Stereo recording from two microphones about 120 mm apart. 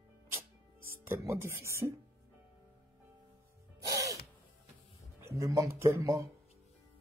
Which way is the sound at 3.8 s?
30° right (ahead or behind).